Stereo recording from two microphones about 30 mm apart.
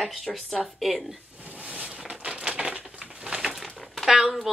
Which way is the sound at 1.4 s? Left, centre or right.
Right.